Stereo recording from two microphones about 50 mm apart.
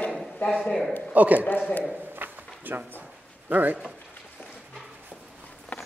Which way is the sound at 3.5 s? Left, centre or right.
Right.